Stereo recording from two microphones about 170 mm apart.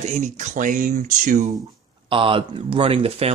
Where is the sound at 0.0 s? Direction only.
45° right (ahead or behind).